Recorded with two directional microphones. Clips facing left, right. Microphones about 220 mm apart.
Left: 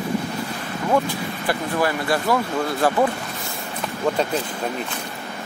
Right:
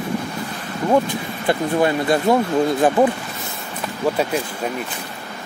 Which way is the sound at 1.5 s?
25° right (ahead or behind).